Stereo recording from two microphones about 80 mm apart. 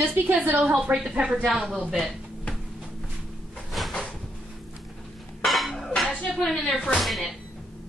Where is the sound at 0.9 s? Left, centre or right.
Centre.